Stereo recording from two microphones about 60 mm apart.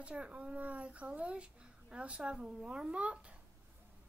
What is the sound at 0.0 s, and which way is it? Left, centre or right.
Speech, centre.